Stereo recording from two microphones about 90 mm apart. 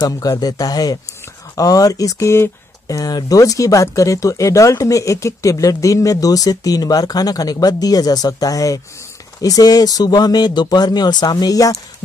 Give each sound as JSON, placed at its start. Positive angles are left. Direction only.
{"t": 0.0, "sound": "speech", "side_deg": 45}
{"t": 3.0, "sound": "speech", "side_deg": 45}